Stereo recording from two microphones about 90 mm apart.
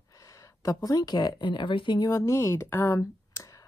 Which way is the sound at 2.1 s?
35° left (ahead or behind).